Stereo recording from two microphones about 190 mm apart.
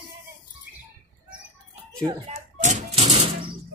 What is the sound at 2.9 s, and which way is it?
Typewriter, 30° right (ahead or behind).